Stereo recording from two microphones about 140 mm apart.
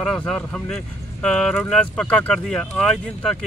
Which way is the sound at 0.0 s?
5° left (ahead or behind).